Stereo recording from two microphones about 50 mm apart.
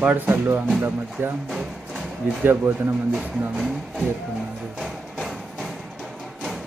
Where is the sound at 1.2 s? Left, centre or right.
Right.